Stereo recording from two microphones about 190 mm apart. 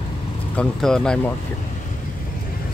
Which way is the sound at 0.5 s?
5° left (ahead or behind).